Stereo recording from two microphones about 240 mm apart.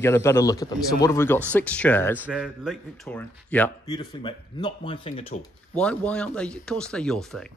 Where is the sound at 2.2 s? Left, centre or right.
Centre.